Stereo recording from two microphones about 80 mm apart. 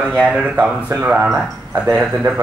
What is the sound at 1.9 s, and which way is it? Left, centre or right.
Speech, centre.